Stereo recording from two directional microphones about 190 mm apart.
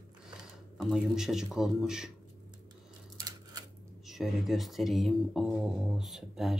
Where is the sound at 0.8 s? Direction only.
Centre (ahead or behind).